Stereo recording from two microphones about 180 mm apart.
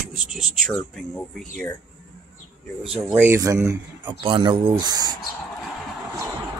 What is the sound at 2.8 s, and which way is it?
Speech, 5° right (ahead or behind).